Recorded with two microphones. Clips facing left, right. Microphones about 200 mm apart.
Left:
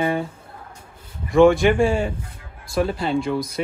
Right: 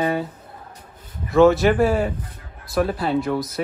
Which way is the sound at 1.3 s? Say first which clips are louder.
Even; 5° right (ahead or behind).